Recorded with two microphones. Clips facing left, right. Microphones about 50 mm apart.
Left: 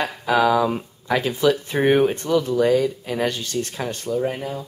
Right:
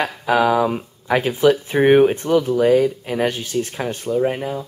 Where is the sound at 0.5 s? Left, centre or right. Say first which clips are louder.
Right 1 dB; centre.